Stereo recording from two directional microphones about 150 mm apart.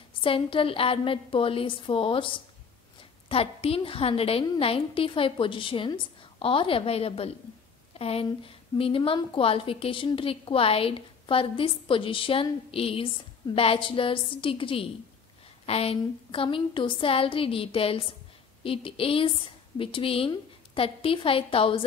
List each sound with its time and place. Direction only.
0.2 s a woman's voice: 35° left (ahead or behind)